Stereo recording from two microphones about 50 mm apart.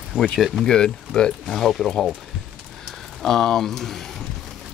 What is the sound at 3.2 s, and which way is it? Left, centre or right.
Speech, centre.